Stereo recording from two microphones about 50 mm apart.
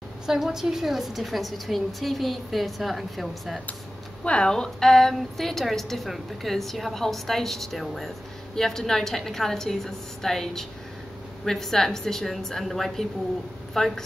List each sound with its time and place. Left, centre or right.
0.3 s a woman's voice: centre
4.2 s a woman's voice: left